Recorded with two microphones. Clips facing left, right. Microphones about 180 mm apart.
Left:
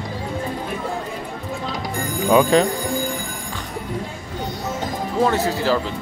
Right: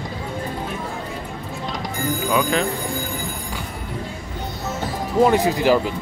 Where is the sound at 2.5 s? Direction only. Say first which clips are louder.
Left 6 dB; 35° left (ahead or behind).